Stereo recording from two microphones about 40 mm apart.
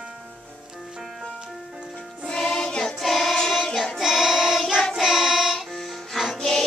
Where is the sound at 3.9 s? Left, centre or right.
Centre.